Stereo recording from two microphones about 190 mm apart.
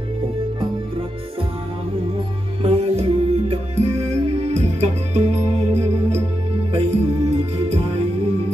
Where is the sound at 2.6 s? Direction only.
30° right (ahead or behind).